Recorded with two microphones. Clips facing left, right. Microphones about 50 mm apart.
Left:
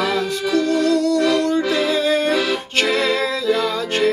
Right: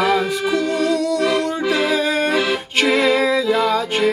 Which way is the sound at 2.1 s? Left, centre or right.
Right.